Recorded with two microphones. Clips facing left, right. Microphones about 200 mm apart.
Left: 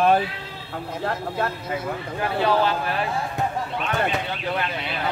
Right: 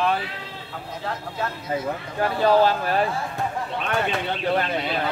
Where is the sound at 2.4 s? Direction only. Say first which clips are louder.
Right 4 dB; 40° right (ahead or behind).